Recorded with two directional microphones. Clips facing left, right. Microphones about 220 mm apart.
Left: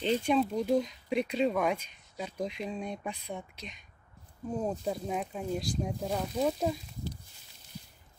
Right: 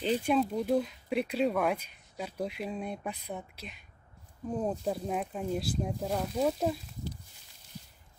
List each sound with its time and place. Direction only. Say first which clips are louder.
0.0 s speech: even; 5° right (ahead or behind)